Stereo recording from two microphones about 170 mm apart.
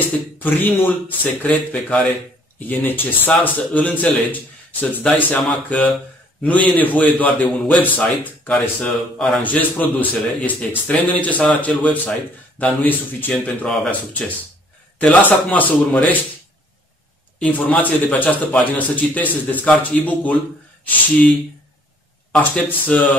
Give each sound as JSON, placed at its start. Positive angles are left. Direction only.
{"t": 0.4, "sound": "a man's voice", "side_deg": 10}
{"t": 17.4, "sound": "a man's voice", "side_deg": 10}
{"t": 22.8, "sound": "a man's voice", "side_deg": 10}